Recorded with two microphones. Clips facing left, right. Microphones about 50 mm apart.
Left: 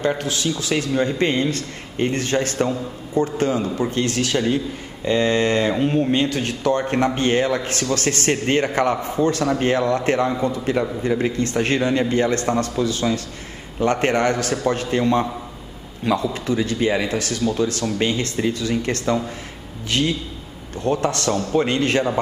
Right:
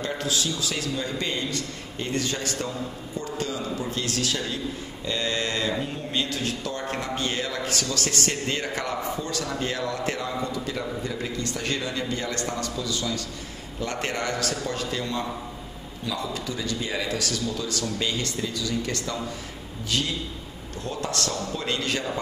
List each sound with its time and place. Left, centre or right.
0.0 s a man's voice: left